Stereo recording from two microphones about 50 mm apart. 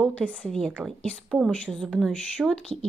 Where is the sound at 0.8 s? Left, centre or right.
Right.